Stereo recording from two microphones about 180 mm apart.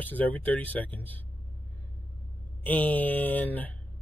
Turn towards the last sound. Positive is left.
turn(degrees=10)  # may be behind; listen again after turning